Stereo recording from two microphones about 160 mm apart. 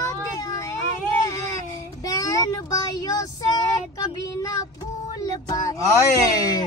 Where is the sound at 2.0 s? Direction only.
20° left (ahead or behind).